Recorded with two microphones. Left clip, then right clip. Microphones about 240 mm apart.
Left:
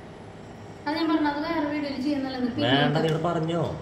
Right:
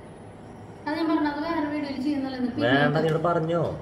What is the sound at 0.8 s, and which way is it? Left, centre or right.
A woman's voice, centre.